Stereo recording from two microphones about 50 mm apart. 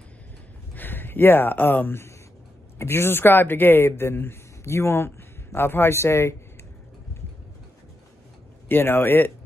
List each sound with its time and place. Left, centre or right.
0.7 s speech: left
2.8 s a man's voice: left
8.6 s a man's voice: left